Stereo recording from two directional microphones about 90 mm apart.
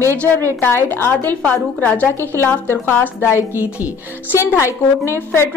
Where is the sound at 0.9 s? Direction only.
20° left (ahead or behind).